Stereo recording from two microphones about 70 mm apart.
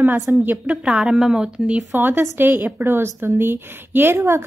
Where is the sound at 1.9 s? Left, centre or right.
Right.